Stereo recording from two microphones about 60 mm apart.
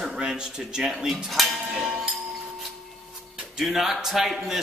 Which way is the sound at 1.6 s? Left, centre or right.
Centre.